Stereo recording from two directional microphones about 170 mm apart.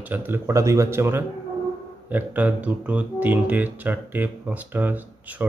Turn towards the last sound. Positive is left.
turn(degrees=-10)  # may be behind; listen again after turning